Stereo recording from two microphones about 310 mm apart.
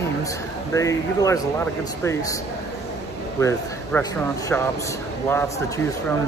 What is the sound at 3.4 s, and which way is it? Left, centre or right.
A man's voice, centre.